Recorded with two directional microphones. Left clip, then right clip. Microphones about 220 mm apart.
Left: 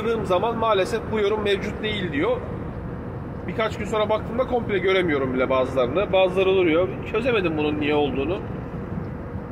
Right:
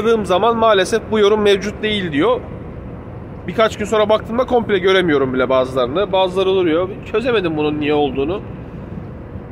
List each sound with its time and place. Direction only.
0.0 s speech: 50° right (ahead or behind)
3.4 s speech: 50° right (ahead or behind)